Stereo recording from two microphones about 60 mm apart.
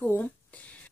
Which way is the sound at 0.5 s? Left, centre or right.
Left.